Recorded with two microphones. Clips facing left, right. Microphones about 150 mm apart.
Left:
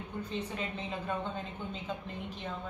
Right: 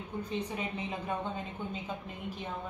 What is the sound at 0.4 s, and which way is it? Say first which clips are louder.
Speech: right 1 dB; 15° right (ahead or behind).